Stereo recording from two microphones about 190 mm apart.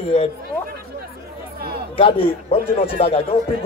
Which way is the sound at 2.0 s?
30° left (ahead or behind).